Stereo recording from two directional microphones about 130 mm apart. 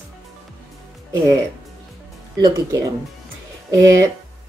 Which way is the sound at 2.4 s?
30° right (ahead or behind).